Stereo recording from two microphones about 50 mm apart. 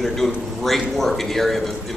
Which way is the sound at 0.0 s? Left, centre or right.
Centre.